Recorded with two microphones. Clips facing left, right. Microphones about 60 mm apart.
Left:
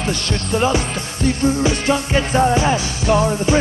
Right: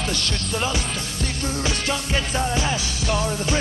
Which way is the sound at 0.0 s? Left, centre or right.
Left.